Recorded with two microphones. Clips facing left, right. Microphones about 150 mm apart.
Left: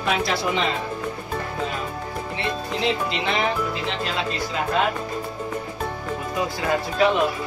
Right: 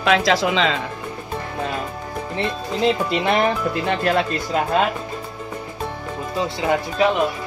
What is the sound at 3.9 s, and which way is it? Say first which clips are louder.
Speech: right 7 dB; 60° right (ahead or behind).